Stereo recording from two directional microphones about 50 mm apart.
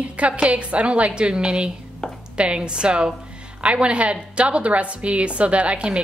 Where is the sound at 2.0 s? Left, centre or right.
Centre.